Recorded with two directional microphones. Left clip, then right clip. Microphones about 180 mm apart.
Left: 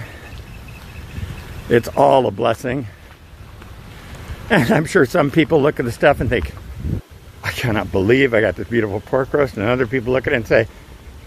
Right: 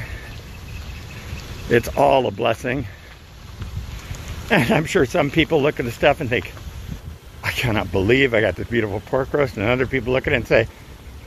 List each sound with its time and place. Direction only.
1.7 s speech: 20° left (ahead or behind)
4.5 s speech: 25° left (ahead or behind)